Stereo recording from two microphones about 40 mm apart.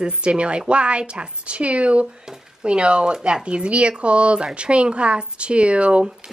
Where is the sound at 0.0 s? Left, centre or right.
Right.